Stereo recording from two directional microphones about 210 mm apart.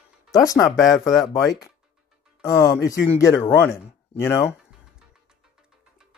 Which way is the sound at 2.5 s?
15° left (ahead or behind).